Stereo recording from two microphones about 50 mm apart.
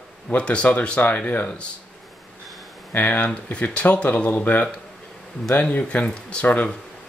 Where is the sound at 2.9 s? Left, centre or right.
Left.